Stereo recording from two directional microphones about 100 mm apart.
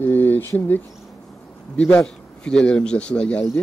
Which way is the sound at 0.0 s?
20° left (ahead or behind).